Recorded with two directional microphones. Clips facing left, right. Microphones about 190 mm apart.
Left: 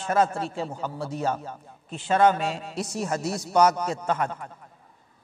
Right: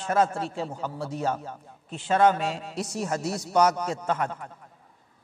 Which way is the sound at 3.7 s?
20° left (ahead or behind).